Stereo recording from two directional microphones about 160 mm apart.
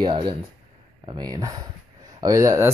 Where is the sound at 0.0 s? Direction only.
30° right (ahead or behind).